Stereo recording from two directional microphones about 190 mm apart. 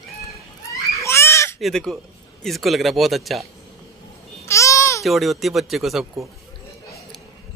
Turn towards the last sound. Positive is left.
turn(degrees=0)  # may be behind; listen again after turning